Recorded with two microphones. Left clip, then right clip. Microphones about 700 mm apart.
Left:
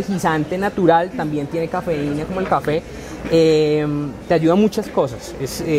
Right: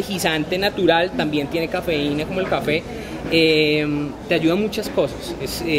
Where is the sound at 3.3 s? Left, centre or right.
Left.